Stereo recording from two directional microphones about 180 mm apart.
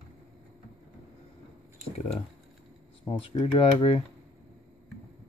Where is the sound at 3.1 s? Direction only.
30° left (ahead or behind).